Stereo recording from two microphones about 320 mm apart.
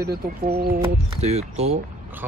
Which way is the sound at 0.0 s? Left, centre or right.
Right.